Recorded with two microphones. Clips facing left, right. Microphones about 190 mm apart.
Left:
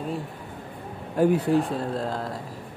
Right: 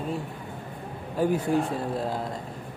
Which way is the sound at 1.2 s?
Centre (ahead or behind).